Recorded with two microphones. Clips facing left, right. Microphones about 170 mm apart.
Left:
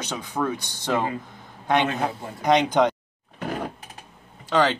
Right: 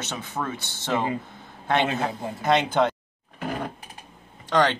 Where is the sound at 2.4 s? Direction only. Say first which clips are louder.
Left 2 dB; 15° left (ahead or behind).